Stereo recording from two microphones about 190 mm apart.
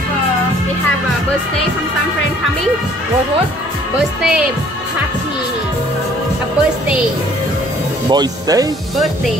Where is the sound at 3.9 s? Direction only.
5° right (ahead or behind).